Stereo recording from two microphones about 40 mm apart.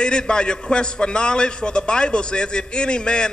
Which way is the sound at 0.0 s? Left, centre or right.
Left.